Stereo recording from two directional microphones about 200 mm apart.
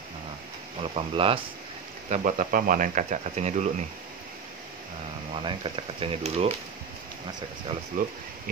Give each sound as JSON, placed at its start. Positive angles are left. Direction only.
{"t": 0.9, "sound": "speech", "side_deg": -25}
{"t": 2.0, "sound": "speech", "side_deg": -40}
{"t": 5.3, "sound": "speech", "side_deg": -25}
{"t": 8.0, "sound": "speech", "side_deg": -45}